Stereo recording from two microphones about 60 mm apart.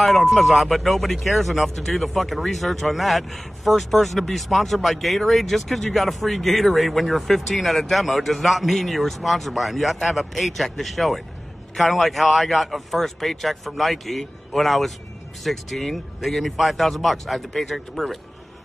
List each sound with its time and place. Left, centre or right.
0.0 s speech: centre